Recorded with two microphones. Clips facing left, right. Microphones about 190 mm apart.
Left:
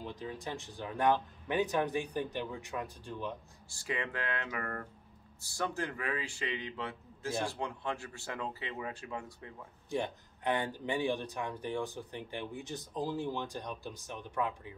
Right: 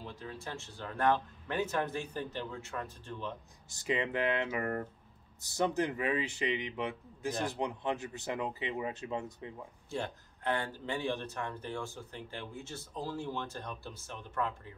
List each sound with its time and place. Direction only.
0.0 s speech: 15° left (ahead or behind)
3.7 s speech: 20° right (ahead or behind)
9.8 s speech: 15° left (ahead or behind)